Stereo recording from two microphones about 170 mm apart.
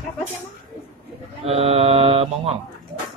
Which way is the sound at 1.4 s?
35° right (ahead or behind).